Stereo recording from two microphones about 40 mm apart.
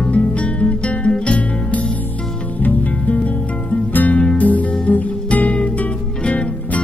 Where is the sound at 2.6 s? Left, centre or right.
Left.